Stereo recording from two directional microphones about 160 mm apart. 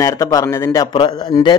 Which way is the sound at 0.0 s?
20° left (ahead or behind).